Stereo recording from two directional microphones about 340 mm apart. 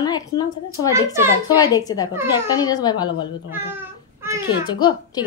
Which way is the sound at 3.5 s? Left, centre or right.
Centre.